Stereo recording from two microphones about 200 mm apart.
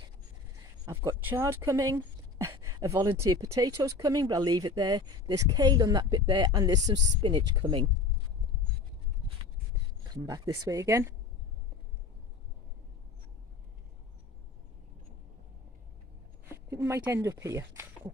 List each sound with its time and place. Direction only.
0.8 s speech: 15° right (ahead or behind)
10.1 s speech: 20° right (ahead or behind)
16.4 s speech: 15° right (ahead or behind)